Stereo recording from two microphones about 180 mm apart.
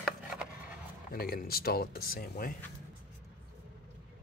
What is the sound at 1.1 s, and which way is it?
Speech, 55° left (ahead or behind).